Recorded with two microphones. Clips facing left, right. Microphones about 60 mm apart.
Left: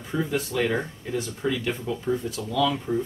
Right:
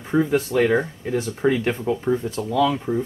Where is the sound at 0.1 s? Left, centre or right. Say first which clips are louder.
Right 7 dB; right.